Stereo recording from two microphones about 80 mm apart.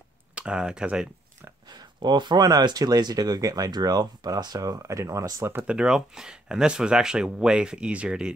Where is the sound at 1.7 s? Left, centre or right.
Right.